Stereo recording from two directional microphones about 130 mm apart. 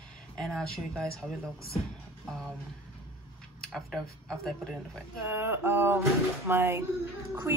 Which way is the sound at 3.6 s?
5° left (ahead or behind).